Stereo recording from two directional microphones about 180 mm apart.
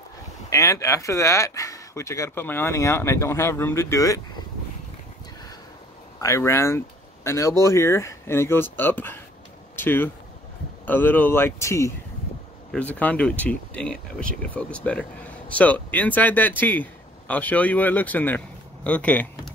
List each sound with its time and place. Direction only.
0.5 s speech: 15° left (ahead or behind)
6.2 s speech: 15° left (ahead or behind)